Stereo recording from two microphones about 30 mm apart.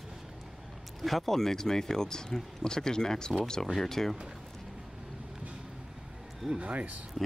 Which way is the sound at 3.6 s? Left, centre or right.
Centre.